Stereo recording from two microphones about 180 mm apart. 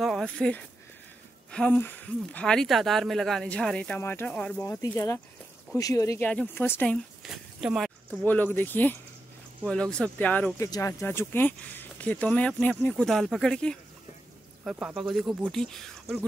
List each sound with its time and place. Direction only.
0.0 s speech: centre (ahead or behind)
7.2 s speech: centre (ahead or behind)
8.2 s speech: 10° left (ahead or behind)
14.6 s speech: 5° right (ahead or behind)